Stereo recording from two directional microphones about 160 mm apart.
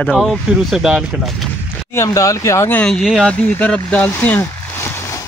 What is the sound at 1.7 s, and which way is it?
Speech, 15° left (ahead or behind).